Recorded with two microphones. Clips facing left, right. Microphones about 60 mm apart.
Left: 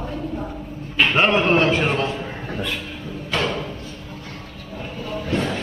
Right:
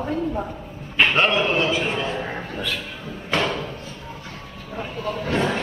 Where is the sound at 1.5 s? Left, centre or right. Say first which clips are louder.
Left 4 dB; left.